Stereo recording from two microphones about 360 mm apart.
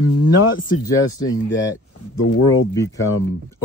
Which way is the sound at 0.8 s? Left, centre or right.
Centre.